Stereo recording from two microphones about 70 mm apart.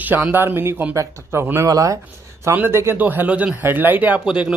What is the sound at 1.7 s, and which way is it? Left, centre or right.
Speech, right.